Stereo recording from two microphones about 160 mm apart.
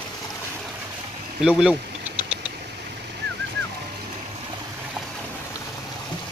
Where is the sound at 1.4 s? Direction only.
5° right (ahead or behind).